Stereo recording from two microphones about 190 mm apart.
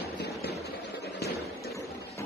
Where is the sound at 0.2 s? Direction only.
60° left (ahead or behind).